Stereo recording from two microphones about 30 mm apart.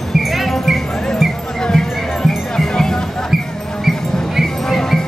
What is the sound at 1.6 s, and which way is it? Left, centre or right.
Music, left.